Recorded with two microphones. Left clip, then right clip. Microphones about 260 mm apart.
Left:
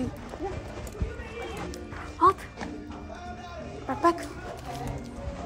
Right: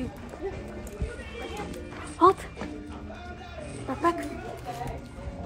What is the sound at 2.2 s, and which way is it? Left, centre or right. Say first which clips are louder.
Speech: right 1 dB; centre.